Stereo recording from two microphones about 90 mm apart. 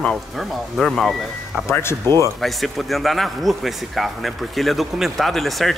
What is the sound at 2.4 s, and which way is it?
Speech, centre (ahead or behind).